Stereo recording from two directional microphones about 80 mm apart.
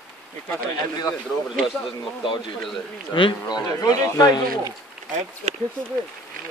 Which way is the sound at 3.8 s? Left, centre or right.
Left.